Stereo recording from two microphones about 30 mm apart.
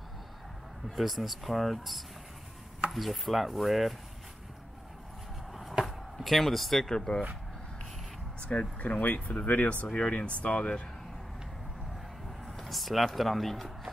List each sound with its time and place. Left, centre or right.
0.9 s speech: centre
5.5 s a sound: centre
6.1 s speech: centre
8.4 s speech: left
12.4 s speech: centre